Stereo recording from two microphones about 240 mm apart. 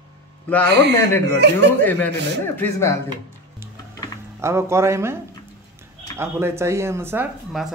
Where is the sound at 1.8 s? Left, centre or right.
Centre.